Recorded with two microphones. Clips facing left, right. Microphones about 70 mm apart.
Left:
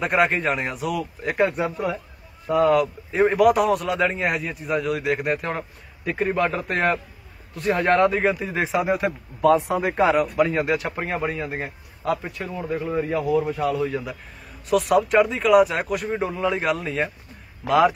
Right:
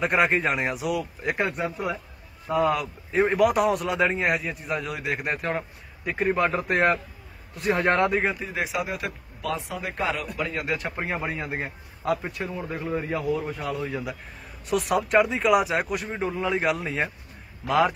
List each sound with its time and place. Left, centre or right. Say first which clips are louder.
0.0 s a man's voice: left 2 dB; centre
9.5 s speech: left 11 dB; left
10.5 s speech: left 6 dB; left
10.8 s a man's voice: left 3 dB; centre